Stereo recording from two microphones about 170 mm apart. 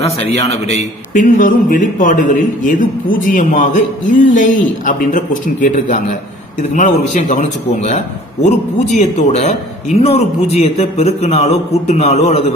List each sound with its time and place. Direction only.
0.0 s a man's voice: 35° left (ahead or behind)